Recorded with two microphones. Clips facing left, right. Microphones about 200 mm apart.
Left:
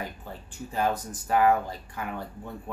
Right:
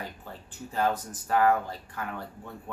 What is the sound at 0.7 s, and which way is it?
Speech, 15° left (ahead or behind).